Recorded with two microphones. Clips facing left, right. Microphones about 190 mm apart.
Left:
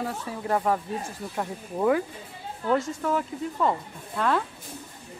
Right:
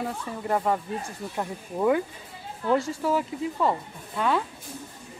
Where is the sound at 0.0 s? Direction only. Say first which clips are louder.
Even; centre (ahead or behind).